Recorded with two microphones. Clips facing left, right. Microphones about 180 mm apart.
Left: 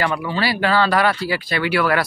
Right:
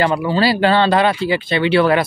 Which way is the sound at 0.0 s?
25° right (ahead or behind).